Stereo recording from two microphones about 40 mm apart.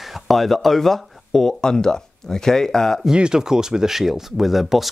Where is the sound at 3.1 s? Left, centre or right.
Centre.